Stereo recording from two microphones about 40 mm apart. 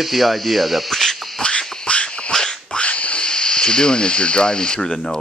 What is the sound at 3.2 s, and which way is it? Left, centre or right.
Speech, left.